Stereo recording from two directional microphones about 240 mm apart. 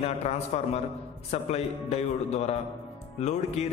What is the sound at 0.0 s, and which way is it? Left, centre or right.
A man's voice, left.